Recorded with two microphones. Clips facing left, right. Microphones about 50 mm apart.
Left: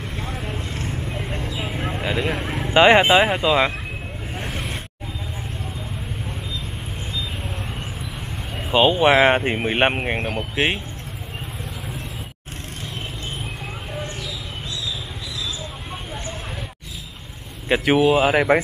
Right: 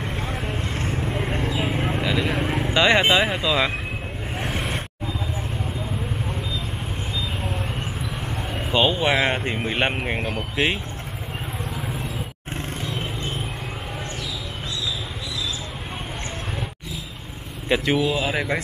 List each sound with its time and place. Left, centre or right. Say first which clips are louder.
0.2 s vehicle: right 1 dB; centre
1.6 s a sound: right 3 dB; centre
2.0 s a sound: left 2 dB; centre
2.3 s vehicle: right 2 dB; centre
2.7 s speech: left 5 dB; left
3.3 s speech: left 3 dB; centre
4.4 s a sound: right 3 dB; centre
8.7 s speech: left 5 dB; centre
17.6 s speech: left 2 dB; centre
17.9 s speech: left 6 dB; left